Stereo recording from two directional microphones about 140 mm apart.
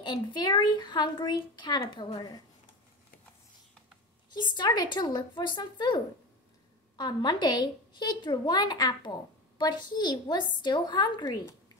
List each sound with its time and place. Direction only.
0.0 s a woman's voice: 30° left (ahead or behind)
4.3 s a woman's voice: 30° left (ahead or behind)
7.0 s a woman's voice: 30° left (ahead or behind)